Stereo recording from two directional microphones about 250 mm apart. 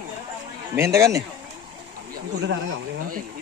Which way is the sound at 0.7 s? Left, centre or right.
Centre.